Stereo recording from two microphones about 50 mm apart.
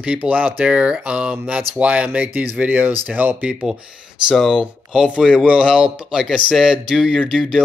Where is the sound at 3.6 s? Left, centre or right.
Centre.